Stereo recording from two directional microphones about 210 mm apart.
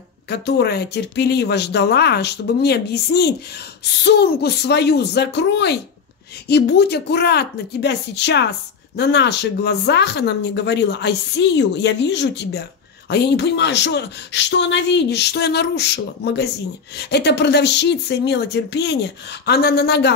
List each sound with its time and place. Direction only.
0.3 s a woman's voice: 50° left (ahead or behind)